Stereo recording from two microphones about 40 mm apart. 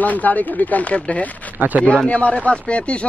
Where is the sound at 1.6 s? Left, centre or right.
Right.